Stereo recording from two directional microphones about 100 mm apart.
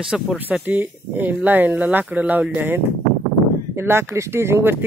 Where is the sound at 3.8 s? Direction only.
25° right (ahead or behind).